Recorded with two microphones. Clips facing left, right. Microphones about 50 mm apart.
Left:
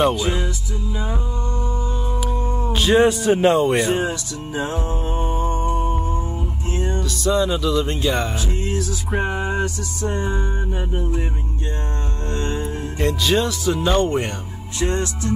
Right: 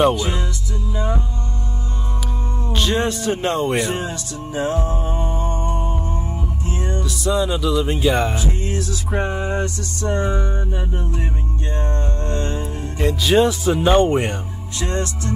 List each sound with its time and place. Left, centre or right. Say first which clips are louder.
0.0 s music: right 1 dB; centre
2.7 s speech: left 5 dB; centre
4.7 s music: right 2 dB; left
5.4 s music: left 2 dB; centre
6.8 s speech: left 2 dB; centre
9.2 s a sound: even; left
10.0 s music: right 3 dB; right
12.4 s music: left 3 dB; left
13.0 s speech: right 2 dB; centre
13.4 s speech: right 4 dB; centre